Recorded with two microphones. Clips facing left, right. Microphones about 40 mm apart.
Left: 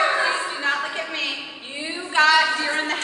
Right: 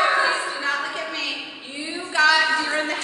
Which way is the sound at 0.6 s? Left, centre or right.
Left.